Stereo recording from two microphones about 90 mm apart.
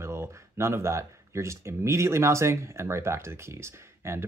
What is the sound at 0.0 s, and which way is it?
Speech, 30° right (ahead or behind).